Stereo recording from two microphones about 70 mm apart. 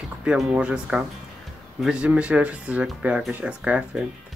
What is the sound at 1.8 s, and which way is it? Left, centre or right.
Speech, centre.